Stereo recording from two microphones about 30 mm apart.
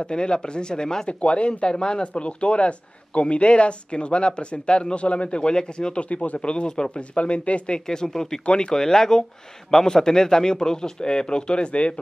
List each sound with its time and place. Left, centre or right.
0.0 s a man's voice: left
1.2 s speech: left
1.7 s a man's voice: left
2.1 s speech: left
5.5 s a man's voice: left
5.9 s speech: left
7.8 s a man's voice: left
8.5 s speech: left
8.7 s a man's voice: centre; by 11.9 s left